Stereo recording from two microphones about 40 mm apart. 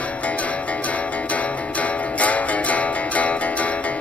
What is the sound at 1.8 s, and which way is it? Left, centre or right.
Music, left.